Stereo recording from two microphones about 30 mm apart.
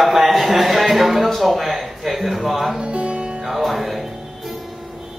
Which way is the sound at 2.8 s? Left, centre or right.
Right.